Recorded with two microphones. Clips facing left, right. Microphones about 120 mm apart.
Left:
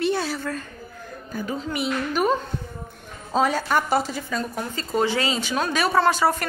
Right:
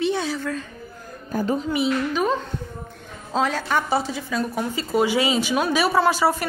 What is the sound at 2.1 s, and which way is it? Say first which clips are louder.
Speech: left 1 dB; 10° left (ahead or behind).